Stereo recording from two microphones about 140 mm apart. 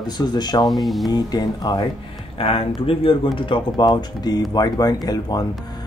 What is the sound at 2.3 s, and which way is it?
Speech, 40° left (ahead or behind).